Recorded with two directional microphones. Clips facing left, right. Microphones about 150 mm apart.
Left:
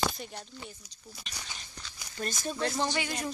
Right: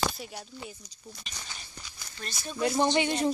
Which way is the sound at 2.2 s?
45° left (ahead or behind).